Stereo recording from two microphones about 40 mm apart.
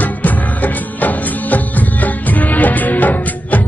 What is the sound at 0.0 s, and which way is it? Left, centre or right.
Music, left.